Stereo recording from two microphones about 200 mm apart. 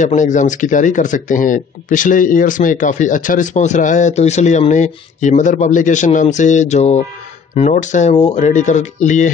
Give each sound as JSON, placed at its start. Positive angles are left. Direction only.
{"t": 0.0, "sound": "speech", "side_deg": 35}